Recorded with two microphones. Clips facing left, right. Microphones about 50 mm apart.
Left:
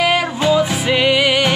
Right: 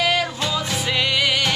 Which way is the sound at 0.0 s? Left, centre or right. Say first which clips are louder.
Left 5 dB; centre.